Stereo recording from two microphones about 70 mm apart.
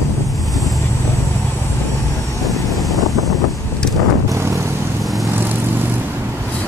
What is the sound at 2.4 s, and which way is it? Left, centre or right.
Vehicle, centre.